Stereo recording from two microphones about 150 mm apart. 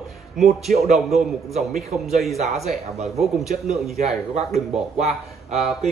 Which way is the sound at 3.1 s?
Centre (ahead or behind).